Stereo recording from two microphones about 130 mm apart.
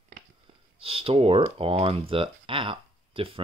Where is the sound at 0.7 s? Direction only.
45° right (ahead or behind).